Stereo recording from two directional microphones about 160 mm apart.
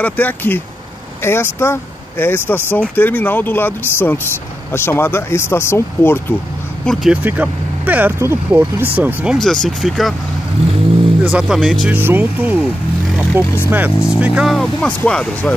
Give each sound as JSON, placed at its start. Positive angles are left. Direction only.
{"t": 0.0, "sound": "speech", "side_deg": 10}
{"t": 6.9, "sound": "speech", "side_deg": -5}
{"t": 11.2, "sound": "speech", "side_deg": -5}
{"t": 11.9, "sound": "speech", "side_deg": -10}
{"t": 13.1, "sound": "vehicle", "side_deg": -10}
{"t": 13.7, "sound": "speech", "side_deg": -10}